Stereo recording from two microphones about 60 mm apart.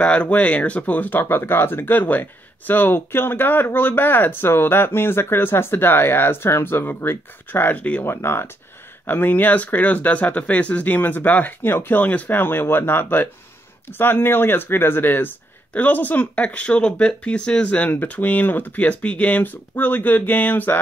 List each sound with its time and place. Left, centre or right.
0.0 s speech: left
8.0 s speech: left
9.0 s speech: left